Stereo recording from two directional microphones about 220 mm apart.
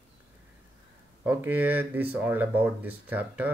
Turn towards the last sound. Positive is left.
turn(degrees=-5)  # may be behind; listen again after turning